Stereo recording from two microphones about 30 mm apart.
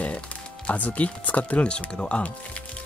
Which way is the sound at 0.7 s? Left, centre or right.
Left.